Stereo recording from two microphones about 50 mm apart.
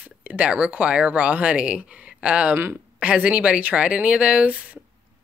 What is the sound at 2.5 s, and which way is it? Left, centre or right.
Speech, right.